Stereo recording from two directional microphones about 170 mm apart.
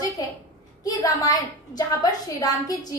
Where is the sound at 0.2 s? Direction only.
20° left (ahead or behind).